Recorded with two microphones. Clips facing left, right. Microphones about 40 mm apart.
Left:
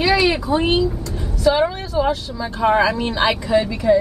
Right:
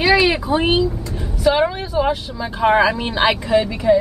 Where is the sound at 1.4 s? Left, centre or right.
Centre.